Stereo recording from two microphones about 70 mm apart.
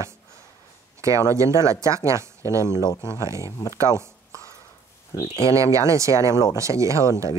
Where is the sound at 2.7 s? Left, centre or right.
Left.